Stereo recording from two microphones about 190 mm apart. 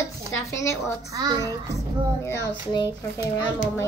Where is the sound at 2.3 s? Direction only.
20° left (ahead or behind).